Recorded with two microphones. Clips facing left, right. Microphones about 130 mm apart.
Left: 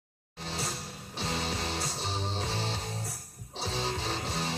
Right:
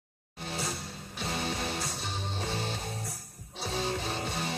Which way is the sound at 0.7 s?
Centre (ahead or behind).